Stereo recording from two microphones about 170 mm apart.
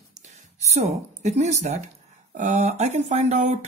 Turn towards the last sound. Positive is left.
turn(degrees=-40)  # may be behind; listen again after turning